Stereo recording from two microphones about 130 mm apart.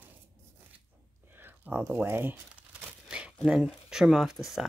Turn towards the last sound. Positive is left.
turn(degrees=-5)  # may be behind; listen again after turning